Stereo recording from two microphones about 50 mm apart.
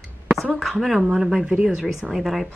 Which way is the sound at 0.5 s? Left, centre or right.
Centre.